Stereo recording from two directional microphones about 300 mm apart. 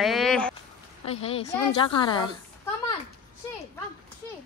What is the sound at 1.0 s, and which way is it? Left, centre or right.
A woman's voice, centre.